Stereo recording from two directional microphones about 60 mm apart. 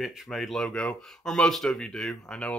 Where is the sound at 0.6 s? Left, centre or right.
Centre.